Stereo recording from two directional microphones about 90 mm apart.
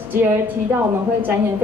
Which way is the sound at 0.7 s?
20° right (ahead or behind).